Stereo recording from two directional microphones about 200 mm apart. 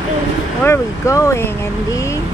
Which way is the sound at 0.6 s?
15° left (ahead or behind).